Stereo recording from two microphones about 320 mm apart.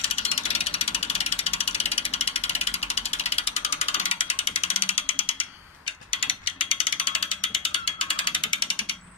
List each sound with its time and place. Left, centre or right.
0.0 s ratchet: centre